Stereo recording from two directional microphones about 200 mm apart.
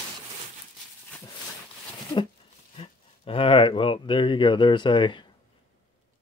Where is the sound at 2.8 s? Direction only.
25° left (ahead or behind).